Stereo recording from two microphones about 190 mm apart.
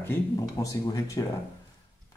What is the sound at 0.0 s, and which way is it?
Speech, 15° left (ahead or behind).